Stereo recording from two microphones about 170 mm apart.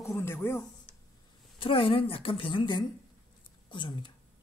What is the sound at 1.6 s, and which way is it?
A woman's voice, 30° left (ahead or behind).